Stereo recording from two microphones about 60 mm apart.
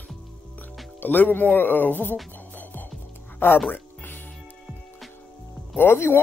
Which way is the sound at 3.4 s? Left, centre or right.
Left.